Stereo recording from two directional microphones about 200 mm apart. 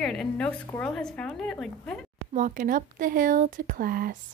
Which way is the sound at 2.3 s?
40° right (ahead or behind).